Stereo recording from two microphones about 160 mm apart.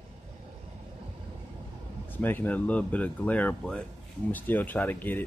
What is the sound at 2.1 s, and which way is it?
Speech, 10° left (ahead or behind).